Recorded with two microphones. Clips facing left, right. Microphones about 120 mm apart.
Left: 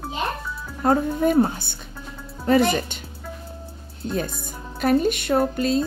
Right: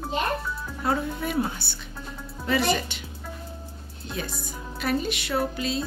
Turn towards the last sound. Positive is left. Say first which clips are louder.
# left 6 dB
turn(degrees=45)  # may be behind; listen again after turning